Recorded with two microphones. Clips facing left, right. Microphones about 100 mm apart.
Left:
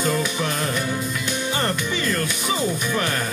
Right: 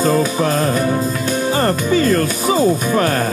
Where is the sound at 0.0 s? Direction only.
35° right (ahead or behind).